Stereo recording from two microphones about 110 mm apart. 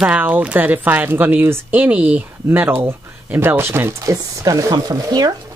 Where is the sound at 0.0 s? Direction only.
15° right (ahead or behind).